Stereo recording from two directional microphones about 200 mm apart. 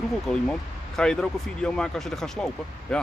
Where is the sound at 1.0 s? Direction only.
5° left (ahead or behind).